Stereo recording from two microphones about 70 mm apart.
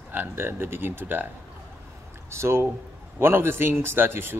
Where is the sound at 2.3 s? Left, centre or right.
Right.